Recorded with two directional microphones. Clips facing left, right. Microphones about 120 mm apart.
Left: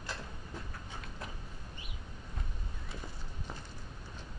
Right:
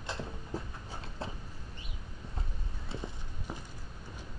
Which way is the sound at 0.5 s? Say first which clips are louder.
Right 7 dB; 35° right (ahead or behind).